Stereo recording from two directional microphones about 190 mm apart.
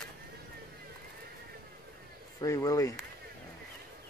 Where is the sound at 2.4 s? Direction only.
15° left (ahead or behind).